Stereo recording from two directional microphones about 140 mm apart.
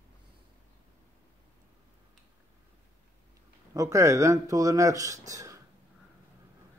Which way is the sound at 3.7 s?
20° right (ahead or behind).